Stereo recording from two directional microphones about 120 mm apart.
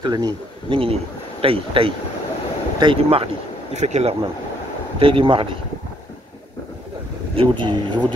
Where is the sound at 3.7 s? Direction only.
70° right (ahead or behind).